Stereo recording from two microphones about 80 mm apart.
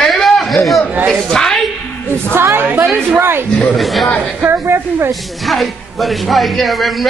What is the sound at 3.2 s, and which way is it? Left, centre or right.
Speech, right.